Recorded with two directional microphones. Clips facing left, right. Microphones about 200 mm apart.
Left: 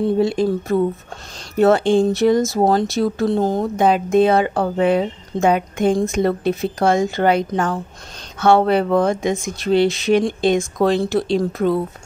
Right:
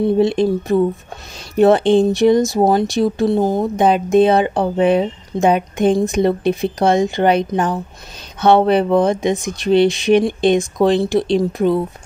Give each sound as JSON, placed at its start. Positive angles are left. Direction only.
{"t": 0.2, "sound": "speech", "side_deg": -20}